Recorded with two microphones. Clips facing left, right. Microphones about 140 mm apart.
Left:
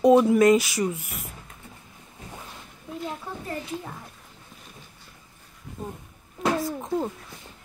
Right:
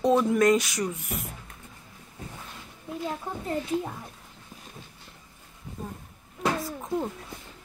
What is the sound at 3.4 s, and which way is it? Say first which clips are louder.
Speech: right 6 dB; 20° right (ahead or behind).